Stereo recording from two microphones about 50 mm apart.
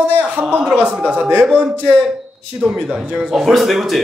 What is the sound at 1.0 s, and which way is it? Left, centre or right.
Speech, right.